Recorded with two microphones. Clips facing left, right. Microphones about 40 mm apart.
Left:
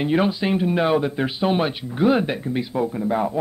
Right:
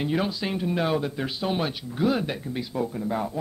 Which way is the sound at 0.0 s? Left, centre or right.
Left.